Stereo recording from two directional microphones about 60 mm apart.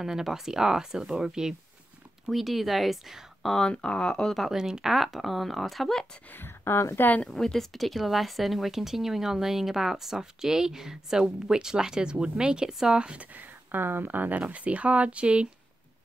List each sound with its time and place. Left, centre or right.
0.0 s speech: centre
3.5 s speech: centre
4.4 s speech: centre
6.3 s speech: left
7.0 s speech: left
7.2 s speech: centre